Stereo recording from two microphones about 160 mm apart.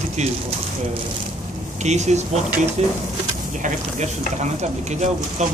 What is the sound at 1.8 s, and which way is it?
Speech, 45° right (ahead or behind).